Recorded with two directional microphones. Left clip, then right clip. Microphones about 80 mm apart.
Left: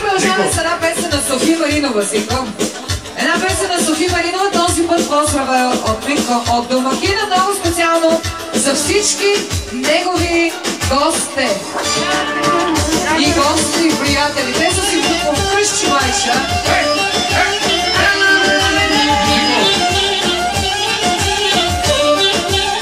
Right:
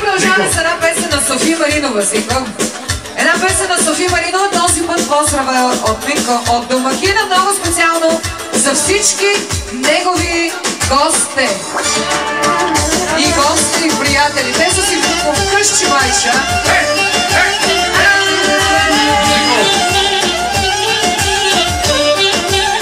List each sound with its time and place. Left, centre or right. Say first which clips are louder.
1.4 s speech: right 1 dB; right
8.6 s speech: right 2 dB; right
10.9 s speech: right 2 dB; right
12.1 s music: even; right